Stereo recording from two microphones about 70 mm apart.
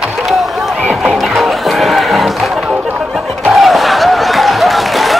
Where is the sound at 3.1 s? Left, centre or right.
Centre.